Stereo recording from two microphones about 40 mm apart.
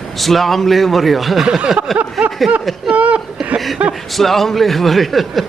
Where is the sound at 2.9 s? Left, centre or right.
Right.